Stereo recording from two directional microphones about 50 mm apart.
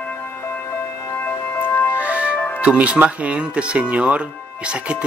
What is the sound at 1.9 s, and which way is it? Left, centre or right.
Music, right.